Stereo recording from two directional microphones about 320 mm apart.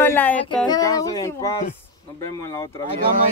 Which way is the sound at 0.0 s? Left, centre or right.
Centre.